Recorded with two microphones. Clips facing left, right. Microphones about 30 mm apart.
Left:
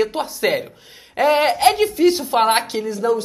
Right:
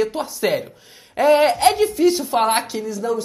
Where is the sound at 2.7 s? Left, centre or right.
Left.